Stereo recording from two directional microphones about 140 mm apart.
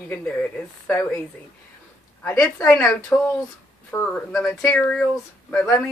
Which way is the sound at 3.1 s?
10° left (ahead or behind).